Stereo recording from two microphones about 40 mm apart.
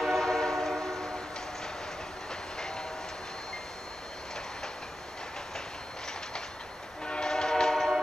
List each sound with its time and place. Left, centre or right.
0.0 s train: centre
7.1 s train: left